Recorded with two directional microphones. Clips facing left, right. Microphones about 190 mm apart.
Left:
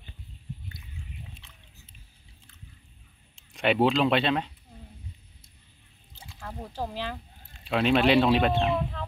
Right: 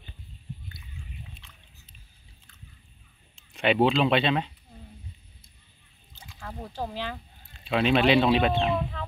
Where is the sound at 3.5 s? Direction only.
5° left (ahead or behind).